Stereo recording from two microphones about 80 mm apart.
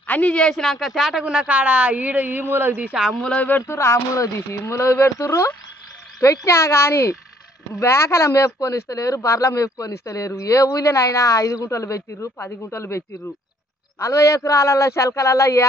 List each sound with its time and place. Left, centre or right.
0.0 s speech: centre
3.2 s speech: centre
3.4 s speech: left
3.7 s speech: left